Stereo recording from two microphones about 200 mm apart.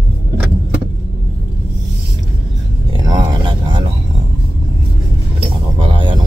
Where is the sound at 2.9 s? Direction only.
20° right (ahead or behind).